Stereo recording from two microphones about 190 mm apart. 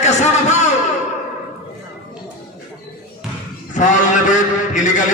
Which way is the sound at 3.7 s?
40° left (ahead or behind).